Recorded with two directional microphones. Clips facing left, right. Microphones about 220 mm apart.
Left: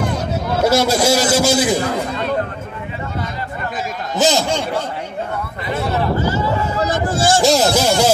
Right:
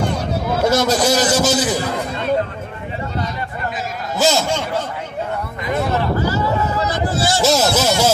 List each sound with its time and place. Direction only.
0.7 s a man's voice: 10° left (ahead or behind)
4.2 s a man's voice: 15° left (ahead or behind)
6.9 s a man's voice: 50° left (ahead or behind)
7.4 s a man's voice: 15° left (ahead or behind)